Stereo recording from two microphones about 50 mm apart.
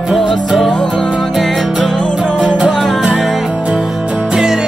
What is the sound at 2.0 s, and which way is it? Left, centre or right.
Music, centre.